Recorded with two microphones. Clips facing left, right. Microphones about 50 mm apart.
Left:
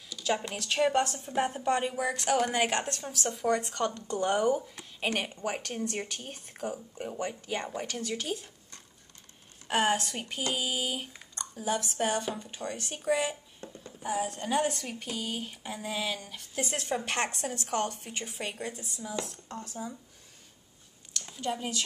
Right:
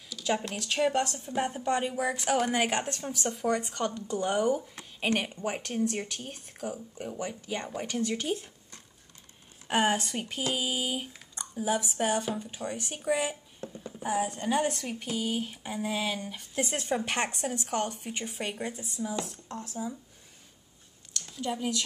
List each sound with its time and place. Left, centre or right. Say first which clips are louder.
0.2 s speech: right 1 dB; centre
4.7 s a sound: right 2 dB; centre
5.3 s speech: right 1 dB; centre
7.8 s speech: right 4 dB; centre
13.0 s a sound: even; centre
14.1 s speech: right 1 dB; centre
18.9 s speech: right 5 dB; centre
21.4 s speech: right 1 dB; centre